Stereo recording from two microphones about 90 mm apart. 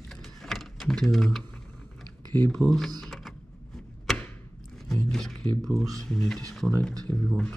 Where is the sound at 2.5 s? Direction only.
5° left (ahead or behind).